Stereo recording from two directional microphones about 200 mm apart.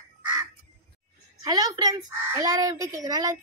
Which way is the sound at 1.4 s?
20° right (ahead or behind).